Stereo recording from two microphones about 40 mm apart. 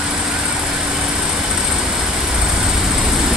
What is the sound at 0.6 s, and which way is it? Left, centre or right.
Vehicle, centre.